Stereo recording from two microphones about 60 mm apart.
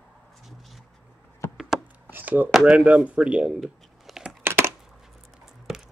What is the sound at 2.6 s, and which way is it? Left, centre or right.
Speech, centre.